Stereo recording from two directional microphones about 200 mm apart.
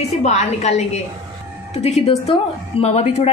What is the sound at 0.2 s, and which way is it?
A woman's voice, 35° left (ahead or behind).